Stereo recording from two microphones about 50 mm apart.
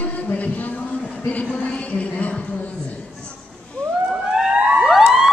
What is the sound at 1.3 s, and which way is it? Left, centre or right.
Speech, left.